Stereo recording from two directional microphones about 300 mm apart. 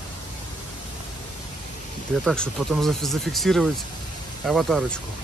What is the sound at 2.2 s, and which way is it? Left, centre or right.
Speech, centre.